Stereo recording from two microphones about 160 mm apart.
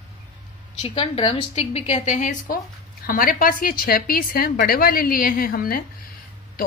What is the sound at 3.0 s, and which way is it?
A woman's voice, 60° left (ahead or behind).